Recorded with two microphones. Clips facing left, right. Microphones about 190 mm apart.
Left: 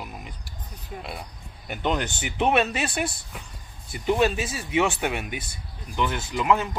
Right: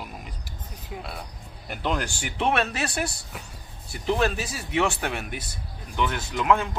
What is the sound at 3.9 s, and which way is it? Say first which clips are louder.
Speech: left 2 dB; 5° left (ahead or behind).